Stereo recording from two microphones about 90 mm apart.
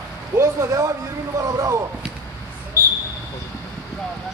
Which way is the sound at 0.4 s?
35° right (ahead or behind).